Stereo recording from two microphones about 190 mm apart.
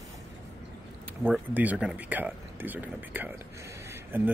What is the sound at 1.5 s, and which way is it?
Speech, 10° right (ahead or behind).